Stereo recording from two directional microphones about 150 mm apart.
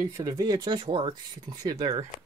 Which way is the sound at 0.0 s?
25° right (ahead or behind).